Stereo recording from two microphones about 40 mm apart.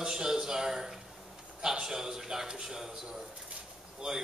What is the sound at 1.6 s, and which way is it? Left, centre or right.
A man's voice, centre.